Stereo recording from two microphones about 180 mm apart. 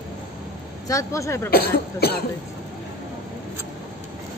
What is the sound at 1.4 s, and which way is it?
Speech, 60° left (ahead or behind).